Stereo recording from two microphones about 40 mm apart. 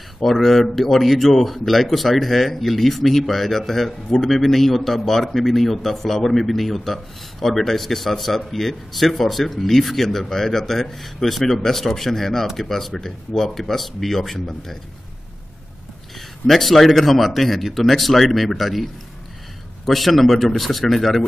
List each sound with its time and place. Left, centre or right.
0.2 s a man's voice: centre
16.4 s a man's voice: centre